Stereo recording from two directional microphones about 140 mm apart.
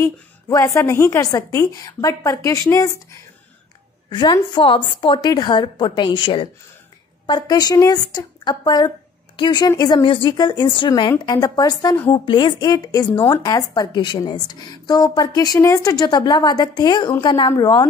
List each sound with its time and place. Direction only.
0.0 s speech: 20° left (ahead or behind)
4.1 s a woman's voice: 35° left (ahead or behind)